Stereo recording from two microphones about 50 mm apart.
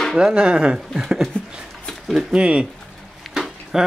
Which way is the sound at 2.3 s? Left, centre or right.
Right.